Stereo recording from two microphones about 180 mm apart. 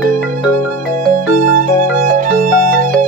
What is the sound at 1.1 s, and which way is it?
Music, 45° right (ahead or behind).